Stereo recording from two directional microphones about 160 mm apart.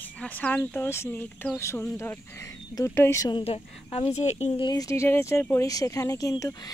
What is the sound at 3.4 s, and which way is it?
Speech, 40° left (ahead or behind).